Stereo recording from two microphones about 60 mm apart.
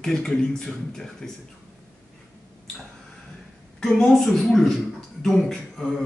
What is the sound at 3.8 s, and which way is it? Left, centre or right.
A man's voice, centre.